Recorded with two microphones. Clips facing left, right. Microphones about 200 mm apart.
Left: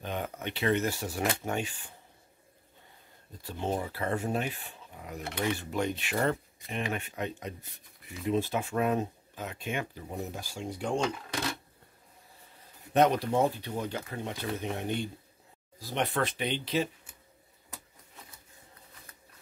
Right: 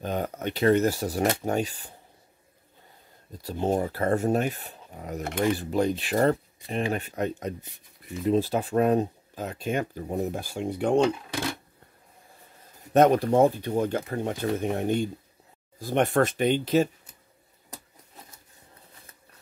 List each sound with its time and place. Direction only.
0.0 s speech: 40° right (ahead or behind)
3.4 s speech: 40° right (ahead or behind); by 11.1 s 60° right (ahead or behind)
12.9 s speech: 45° right (ahead or behind)